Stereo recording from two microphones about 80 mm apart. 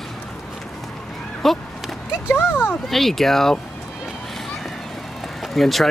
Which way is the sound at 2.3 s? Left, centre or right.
Left.